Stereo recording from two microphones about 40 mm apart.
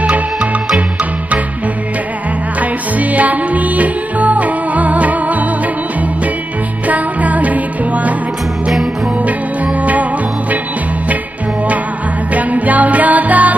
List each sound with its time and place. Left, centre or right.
3.0 s music: right
6.9 s music: right
12.4 s music: right